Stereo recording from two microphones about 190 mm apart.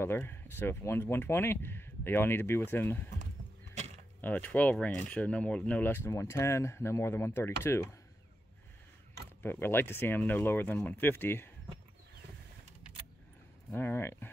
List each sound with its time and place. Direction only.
0.0 s speech: 10° left (ahead or behind)
4.2 s speech: 10° left (ahead or behind)
9.4 s speech: 10° left (ahead or behind)
13.7 s speech: 10° left (ahead or behind)